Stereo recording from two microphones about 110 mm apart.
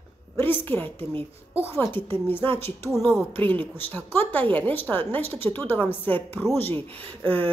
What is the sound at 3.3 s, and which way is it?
A woman's voice, 15° left (ahead or behind).